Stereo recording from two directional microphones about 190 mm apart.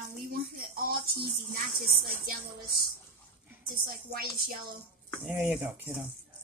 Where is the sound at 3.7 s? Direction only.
50° right (ahead or behind).